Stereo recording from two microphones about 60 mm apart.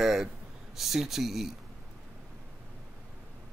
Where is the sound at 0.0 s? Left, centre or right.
Centre.